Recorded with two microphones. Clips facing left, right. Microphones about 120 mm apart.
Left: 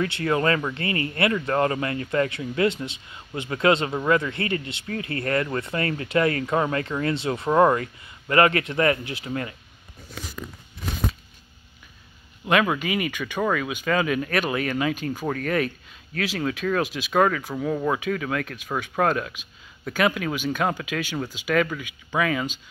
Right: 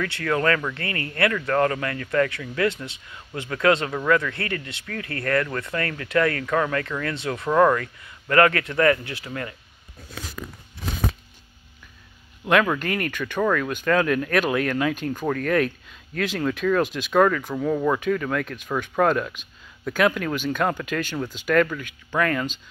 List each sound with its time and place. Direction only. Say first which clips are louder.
0.0 s speech: left 1 dB; 25° left (ahead or behind)
12.4 s speech: right 1 dB; 5° left (ahead or behind)